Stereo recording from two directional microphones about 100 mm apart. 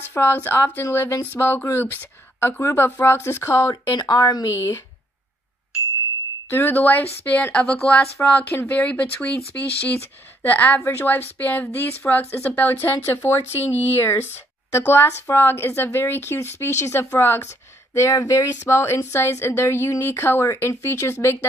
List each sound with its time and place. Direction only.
0.1 s speech: 20° left (ahead or behind)
3.9 s a woman's voice: 45° left (ahead or behind)
6.5 s speech: 20° left (ahead or behind)